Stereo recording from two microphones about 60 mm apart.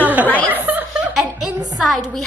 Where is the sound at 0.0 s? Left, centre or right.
Right.